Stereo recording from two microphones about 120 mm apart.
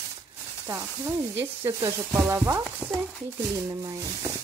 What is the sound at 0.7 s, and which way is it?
Sizzle, 20° right (ahead or behind).